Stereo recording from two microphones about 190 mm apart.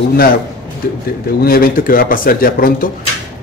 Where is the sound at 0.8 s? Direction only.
55° left (ahead or behind).